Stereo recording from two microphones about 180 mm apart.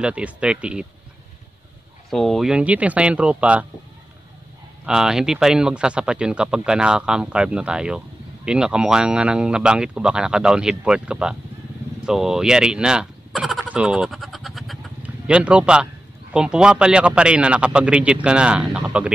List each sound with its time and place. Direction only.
0.0 s speech: 5° right (ahead or behind)
2.0 s speech: centre (ahead or behind)
4.8 s speech: 5° right (ahead or behind)
12.1 s fowl: 5° right (ahead or behind)
16.3 s speech: 5° right (ahead or behind)